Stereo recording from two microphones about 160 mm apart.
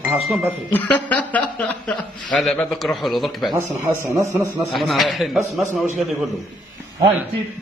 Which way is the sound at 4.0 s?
20° right (ahead or behind).